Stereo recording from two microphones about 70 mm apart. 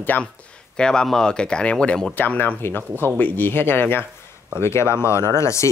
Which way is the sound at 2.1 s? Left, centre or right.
Left.